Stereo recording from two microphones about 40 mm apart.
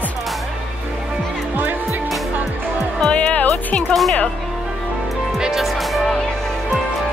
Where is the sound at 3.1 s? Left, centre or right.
Left.